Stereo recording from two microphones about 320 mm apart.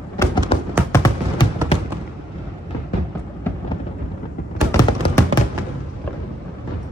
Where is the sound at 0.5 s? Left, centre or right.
Centre.